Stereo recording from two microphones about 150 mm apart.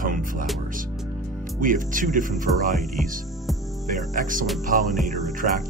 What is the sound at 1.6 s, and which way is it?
Speech, 60° right (ahead or behind).